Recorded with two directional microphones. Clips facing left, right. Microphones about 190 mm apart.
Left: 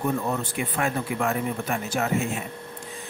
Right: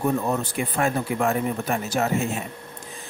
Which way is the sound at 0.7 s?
40° right (ahead or behind).